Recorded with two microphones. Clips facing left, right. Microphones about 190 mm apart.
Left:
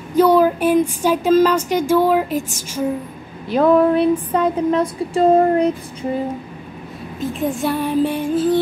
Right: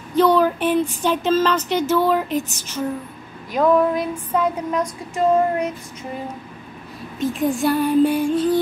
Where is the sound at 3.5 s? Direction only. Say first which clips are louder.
Left 3 dB; 30° left (ahead or behind).